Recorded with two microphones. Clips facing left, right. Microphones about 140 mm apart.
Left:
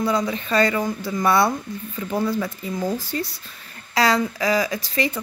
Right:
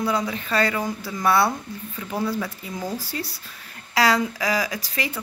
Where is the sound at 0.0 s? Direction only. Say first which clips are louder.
Left 2 dB; 5° right (ahead or behind).